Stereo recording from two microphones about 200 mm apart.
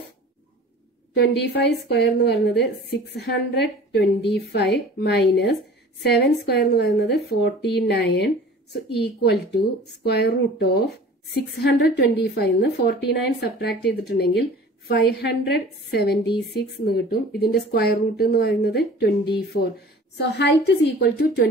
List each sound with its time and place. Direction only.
1.1 s a woman's voice: 55° left (ahead or behind)